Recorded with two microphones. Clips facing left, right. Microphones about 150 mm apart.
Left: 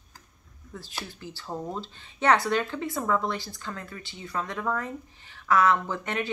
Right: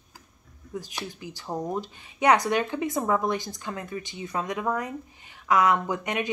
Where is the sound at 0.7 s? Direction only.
15° right (ahead or behind).